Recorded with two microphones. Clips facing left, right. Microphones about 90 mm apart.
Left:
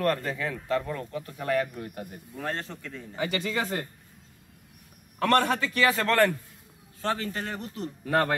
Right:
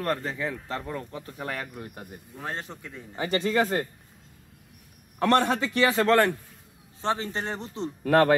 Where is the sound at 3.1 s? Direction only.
40° right (ahead or behind).